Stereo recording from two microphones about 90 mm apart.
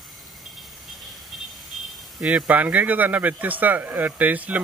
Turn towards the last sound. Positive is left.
turn(degrees=-15)  # may be behind; listen again after turning